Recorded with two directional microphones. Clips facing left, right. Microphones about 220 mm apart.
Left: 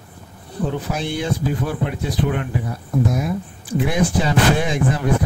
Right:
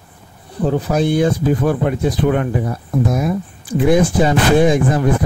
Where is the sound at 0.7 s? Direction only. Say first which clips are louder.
Right 10 dB; 45° right (ahead or behind).